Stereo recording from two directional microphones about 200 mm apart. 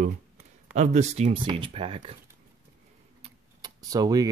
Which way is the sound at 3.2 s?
20° right (ahead or behind).